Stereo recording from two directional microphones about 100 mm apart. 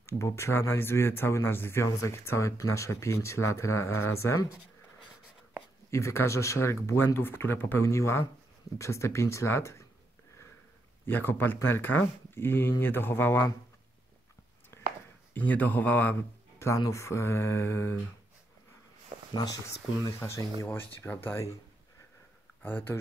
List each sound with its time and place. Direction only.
0.0 s speech: 25° left (ahead or behind)
5.9 s speech: 25° left (ahead or behind)
11.1 s speech: 20° left (ahead or behind)
14.7 s a sound: 25° left (ahead or behind)
15.3 s speech: 15° left (ahead or behind)
19.3 s speech: 35° left (ahead or behind)
22.6 s speech: 20° left (ahead or behind)